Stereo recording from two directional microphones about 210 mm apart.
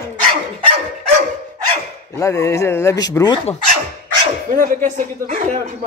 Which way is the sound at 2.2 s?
15° left (ahead or behind).